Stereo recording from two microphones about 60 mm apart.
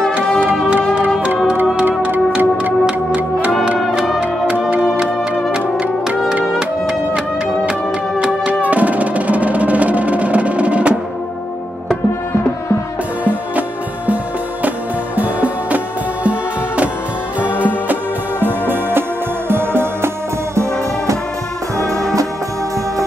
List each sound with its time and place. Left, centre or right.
2.0 s music: right
3.6 s music: centre
4.2 s music: right
4.8 s music: centre
8.6 s music: right
13.2 s music: right
15.1 s music: right